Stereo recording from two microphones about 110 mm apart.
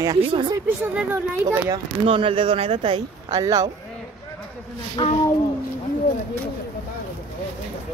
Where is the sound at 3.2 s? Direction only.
30° right (ahead or behind).